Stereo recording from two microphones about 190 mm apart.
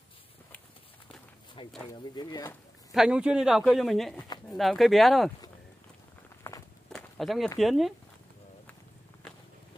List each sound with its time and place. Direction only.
1.0 s walk: 25° left (ahead or behind)
1.9 s speech: 20° left (ahead or behind)
2.9 s a man's voice: 5° right (ahead or behind)
6.5 s walk: 10° left (ahead or behind)
6.9 s walk: centre (ahead or behind)
7.5 s a man's voice: centre (ahead or behind)